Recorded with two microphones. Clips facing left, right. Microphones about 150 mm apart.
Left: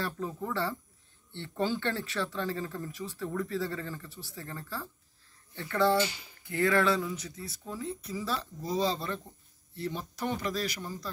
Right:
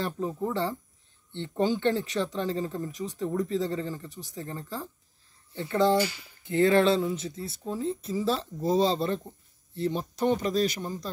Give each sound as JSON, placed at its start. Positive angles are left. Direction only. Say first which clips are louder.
{"t": 0.0, "sound": "speech", "louder": "right 5 dB", "side_deg": -20}